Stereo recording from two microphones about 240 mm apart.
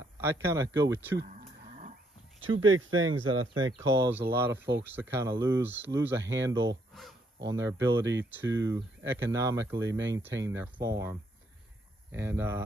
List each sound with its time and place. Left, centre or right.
0.2 s speech: centre
1.3 s a sound: right
2.4 s speech: right
3.7 s speech: centre
6.9 s a sound: centre
7.4 s speech: centre